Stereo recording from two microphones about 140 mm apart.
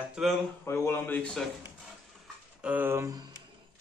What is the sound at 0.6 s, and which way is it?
Speech, 20° left (ahead or behind).